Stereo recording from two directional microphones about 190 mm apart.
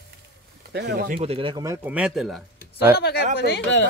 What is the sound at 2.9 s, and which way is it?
Speech, 60° left (ahead or behind).